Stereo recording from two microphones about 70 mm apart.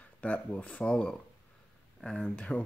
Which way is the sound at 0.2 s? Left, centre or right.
Centre.